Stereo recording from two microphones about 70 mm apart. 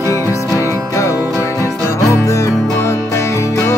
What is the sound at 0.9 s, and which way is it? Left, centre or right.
Music, left.